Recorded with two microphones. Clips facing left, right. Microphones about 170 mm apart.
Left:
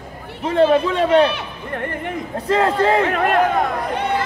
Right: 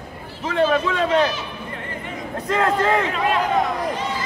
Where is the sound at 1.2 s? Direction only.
60° left (ahead or behind).